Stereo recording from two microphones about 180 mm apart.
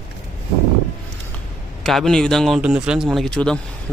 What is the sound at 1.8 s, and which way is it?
A man's voice, centre (ahead or behind).